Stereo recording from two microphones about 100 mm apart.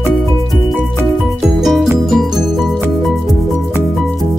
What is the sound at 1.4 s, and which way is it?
Music, 5° right (ahead or behind).